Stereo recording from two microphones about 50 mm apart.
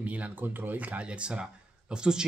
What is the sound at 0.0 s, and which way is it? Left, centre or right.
Speech, right.